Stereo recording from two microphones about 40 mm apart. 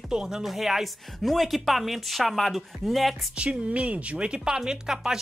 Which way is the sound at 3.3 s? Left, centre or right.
Right.